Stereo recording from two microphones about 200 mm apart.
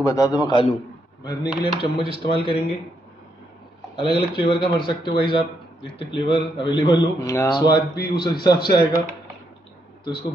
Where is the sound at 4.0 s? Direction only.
25° left (ahead or behind).